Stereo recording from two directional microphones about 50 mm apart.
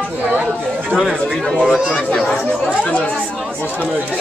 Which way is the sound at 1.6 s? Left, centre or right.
Centre.